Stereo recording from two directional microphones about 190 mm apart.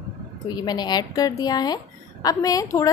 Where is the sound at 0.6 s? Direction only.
20° left (ahead or behind).